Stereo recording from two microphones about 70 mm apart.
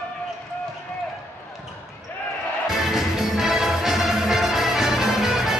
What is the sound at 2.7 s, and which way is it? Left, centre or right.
Music, centre.